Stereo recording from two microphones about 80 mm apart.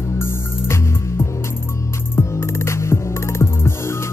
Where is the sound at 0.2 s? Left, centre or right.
Left.